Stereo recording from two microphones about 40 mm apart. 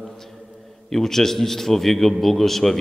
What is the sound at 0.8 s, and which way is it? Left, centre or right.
A man's voice, centre.